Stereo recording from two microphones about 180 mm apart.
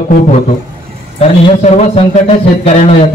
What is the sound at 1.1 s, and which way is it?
A man's voice, 35° left (ahead or behind).